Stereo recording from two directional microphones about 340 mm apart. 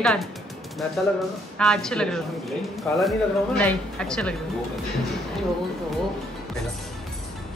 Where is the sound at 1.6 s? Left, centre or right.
Centre.